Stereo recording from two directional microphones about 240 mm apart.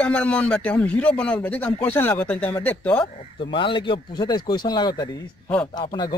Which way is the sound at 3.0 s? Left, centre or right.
Left.